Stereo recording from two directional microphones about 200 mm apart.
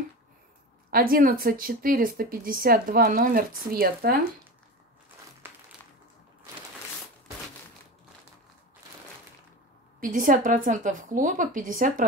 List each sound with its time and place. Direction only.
0.8 s speech: 45° right (ahead or behind)
5.4 s a sound: 10° right (ahead or behind)
9.9 s speech: 45° right (ahead or behind)